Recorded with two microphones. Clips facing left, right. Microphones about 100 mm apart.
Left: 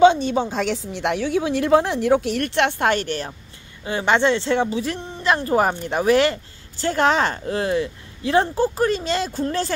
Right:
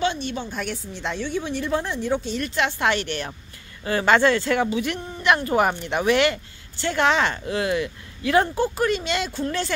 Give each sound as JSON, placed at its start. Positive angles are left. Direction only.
{"t": 0.5, "sound": "a woman's voice", "side_deg": 90}
{"t": 3.8, "sound": "speech", "side_deg": 20}